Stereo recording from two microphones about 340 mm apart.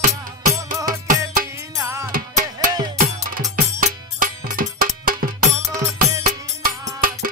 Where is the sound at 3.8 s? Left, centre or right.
Right.